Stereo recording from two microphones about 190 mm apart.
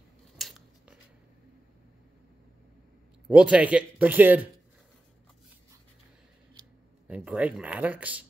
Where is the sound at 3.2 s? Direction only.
5° right (ahead or behind).